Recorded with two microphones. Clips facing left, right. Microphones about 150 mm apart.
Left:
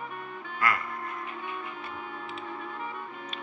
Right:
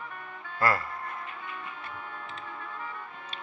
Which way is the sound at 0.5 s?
35° right (ahead or behind).